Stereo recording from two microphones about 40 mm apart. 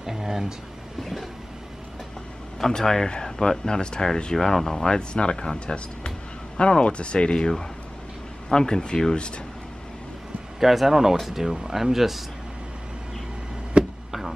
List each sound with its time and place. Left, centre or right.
0.0 s speech: centre
2.6 s speech: centre
4.8 s speech: left
10.6 s speech: centre
13.7 s a sound: right